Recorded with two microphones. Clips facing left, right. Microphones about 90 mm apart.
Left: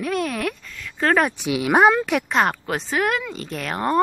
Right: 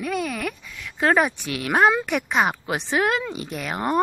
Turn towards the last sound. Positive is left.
turn(degrees=-10)  # may be behind; listen again after turning